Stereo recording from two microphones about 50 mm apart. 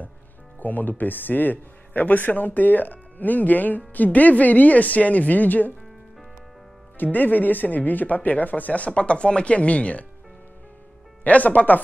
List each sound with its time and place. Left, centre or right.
0.6 s speech: left
7.0 s speech: left
11.2 s speech: left